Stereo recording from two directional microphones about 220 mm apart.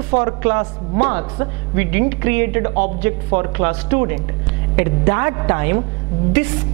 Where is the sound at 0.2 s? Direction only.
15° right (ahead or behind).